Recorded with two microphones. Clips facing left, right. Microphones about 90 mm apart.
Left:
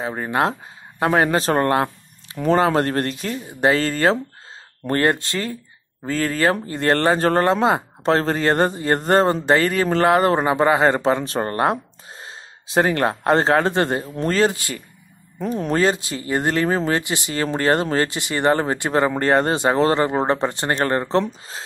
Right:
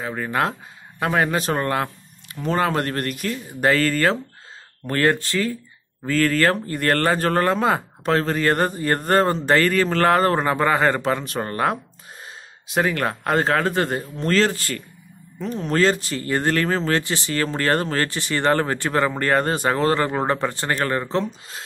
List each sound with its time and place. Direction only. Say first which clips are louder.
0.0 s speech: left 2 dB; 25° left (ahead or behind)
2.5 s speech: left 4 dB; 25° left (ahead or behind)
6.0 s speech: right 1 dB; 20° left (ahead or behind)
15.3 s speech: left 3 dB; 45° left (ahead or behind)
15.7 s speech: right 1 dB; 15° left (ahead or behind)
20.9 s speech: left 3 dB; 40° left (ahead or behind)